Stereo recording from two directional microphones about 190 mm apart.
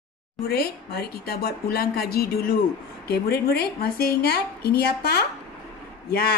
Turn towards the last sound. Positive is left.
turn(degrees=55)  # may be behind; listen again after turning